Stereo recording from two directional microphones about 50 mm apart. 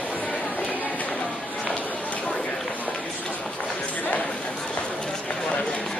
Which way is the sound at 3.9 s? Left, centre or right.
Left.